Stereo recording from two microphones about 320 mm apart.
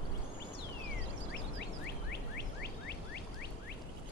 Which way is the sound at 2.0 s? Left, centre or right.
Left.